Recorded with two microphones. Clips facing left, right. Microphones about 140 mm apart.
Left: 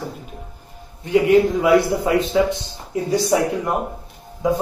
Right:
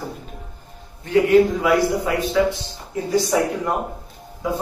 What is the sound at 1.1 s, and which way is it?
A man's voice, 20° left (ahead or behind).